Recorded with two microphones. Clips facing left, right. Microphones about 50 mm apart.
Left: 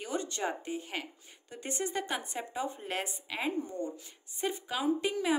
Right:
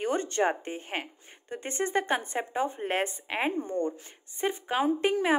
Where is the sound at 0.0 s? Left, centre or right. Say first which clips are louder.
Right 8 dB; right.